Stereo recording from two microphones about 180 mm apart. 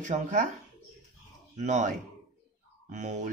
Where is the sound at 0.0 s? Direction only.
45° right (ahead or behind).